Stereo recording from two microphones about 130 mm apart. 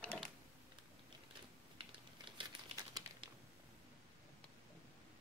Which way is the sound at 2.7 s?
60° right (ahead or behind).